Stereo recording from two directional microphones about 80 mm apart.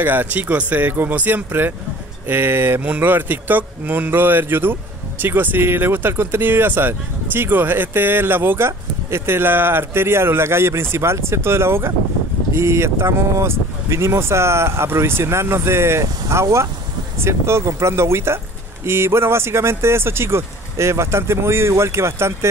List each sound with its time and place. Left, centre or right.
0.0 s speech: right